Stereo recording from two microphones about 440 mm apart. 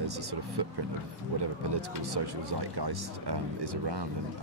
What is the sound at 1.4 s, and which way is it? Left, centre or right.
Speech, right.